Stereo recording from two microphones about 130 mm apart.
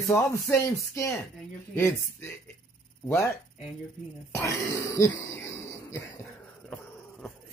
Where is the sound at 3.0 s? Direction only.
20° left (ahead or behind).